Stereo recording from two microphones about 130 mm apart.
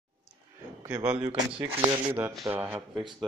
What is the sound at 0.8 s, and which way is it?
A man's voice, 15° right (ahead or behind).